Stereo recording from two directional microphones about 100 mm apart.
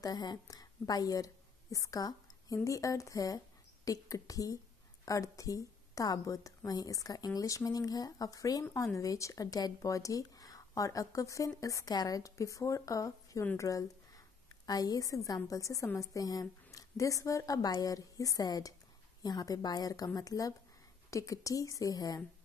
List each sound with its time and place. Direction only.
0.0 s a woman's voice: 45° left (ahead or behind)